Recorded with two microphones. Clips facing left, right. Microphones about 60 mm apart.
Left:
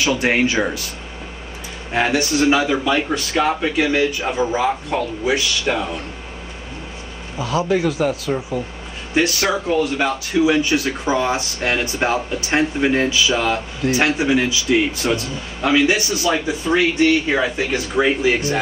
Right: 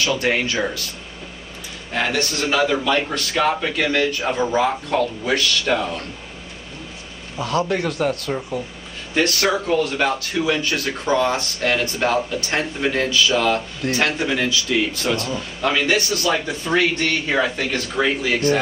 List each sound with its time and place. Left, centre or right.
0.0 s speech: centre
1.9 s speech: centre
7.3 s speech: centre